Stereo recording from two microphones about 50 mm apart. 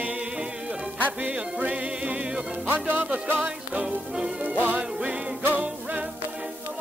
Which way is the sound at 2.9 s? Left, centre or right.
Right.